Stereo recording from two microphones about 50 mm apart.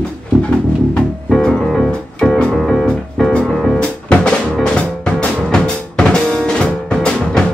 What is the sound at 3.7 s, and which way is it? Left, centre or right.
Music, centre.